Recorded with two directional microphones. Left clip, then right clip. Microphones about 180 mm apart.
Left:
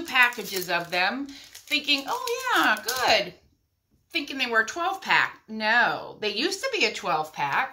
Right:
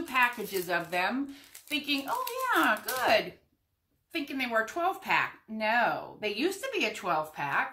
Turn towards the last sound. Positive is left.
turn(degrees=0)  # may be behind; listen again after turning